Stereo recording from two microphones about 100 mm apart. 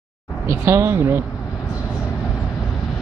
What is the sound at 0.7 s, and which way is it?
Speech, 30° right (ahead or behind).